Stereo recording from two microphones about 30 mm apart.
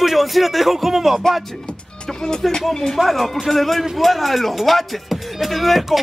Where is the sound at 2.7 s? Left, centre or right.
Centre.